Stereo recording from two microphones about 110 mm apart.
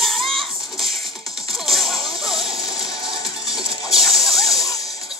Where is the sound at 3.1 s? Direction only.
55° right (ahead or behind).